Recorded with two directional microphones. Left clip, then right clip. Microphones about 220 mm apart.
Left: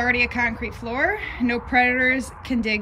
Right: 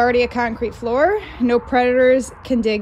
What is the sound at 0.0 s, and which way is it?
A woman's voice, 15° right (ahead or behind).